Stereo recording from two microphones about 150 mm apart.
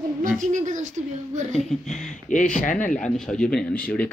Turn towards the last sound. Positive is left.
turn(degrees=10)  # may be behind; listen again after turning